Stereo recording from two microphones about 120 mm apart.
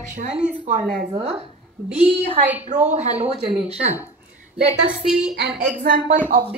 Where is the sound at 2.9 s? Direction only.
70° right (ahead or behind).